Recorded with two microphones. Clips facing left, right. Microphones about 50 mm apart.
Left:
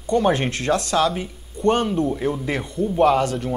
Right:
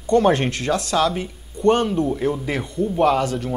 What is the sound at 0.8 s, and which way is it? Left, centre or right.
Speech, centre.